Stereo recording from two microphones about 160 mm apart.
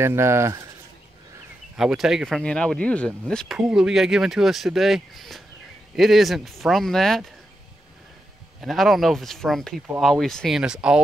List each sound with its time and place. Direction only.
0.0 s speech: 15° right (ahead or behind)
1.8 s speech: 5° right (ahead or behind)
8.5 s speech: centre (ahead or behind)